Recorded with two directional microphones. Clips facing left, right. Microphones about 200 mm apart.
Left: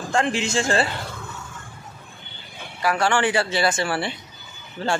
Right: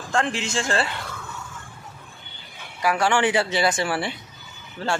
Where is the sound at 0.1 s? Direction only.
Centre (ahead or behind).